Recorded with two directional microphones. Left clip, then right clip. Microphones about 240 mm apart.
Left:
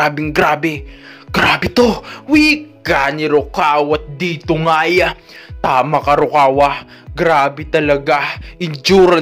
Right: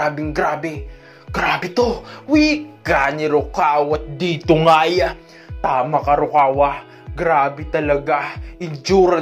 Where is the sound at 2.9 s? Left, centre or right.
Left.